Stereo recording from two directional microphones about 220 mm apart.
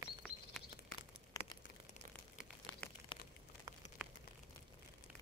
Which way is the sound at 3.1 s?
25° left (ahead or behind).